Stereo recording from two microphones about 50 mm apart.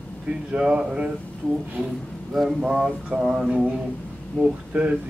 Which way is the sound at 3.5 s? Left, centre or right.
Centre.